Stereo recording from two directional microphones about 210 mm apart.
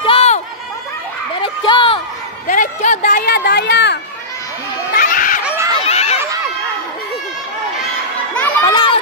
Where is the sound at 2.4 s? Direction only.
40° left (ahead or behind).